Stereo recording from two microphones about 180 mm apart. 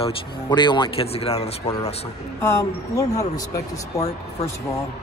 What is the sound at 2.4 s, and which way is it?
Speech, 15° left (ahead or behind).